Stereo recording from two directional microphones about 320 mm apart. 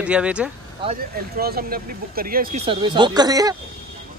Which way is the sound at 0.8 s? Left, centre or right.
Right.